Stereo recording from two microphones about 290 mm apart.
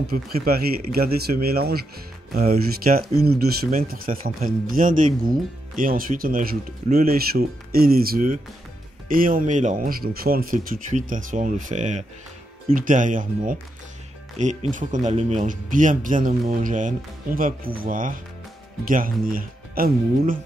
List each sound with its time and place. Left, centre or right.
0.1 s speech: right